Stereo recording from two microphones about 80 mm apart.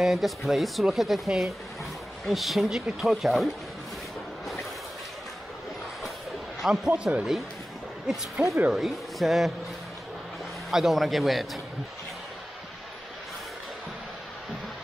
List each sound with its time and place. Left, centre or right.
0.0 s speech: centre
6.6 s speech: centre
7.0 s speech: centre
8.4 s speech: centre
8.7 s speech: centre
10.7 s speech: centre